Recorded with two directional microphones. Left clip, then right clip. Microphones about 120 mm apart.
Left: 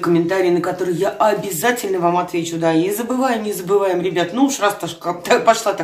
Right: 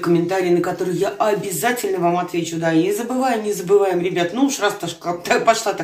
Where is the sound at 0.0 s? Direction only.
25° left (ahead or behind).